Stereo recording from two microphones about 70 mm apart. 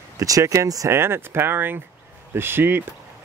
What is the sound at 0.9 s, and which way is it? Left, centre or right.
Speech, right.